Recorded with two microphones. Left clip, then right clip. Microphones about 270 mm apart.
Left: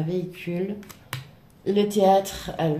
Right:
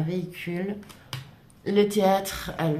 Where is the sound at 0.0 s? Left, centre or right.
Right.